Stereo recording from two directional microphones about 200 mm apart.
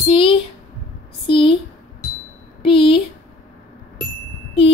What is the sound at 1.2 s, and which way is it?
Speech, 25° left (ahead or behind).